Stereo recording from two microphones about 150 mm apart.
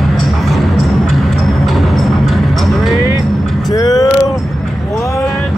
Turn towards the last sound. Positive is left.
turn(degrees=25)  # may be behind; listen again after turning